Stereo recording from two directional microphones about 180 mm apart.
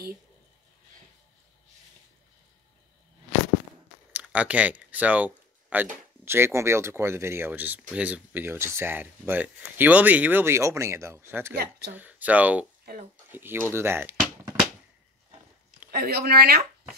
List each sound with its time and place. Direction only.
4.1 s speech: 10° right (ahead or behind)
15.9 s speech: 60° right (ahead or behind)